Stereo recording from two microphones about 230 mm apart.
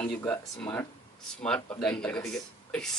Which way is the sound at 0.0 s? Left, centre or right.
Centre.